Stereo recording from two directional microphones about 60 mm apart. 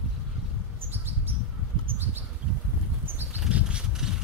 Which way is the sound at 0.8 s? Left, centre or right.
Right.